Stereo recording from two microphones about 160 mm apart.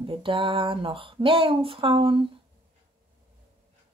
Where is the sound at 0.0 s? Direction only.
35° right (ahead or behind).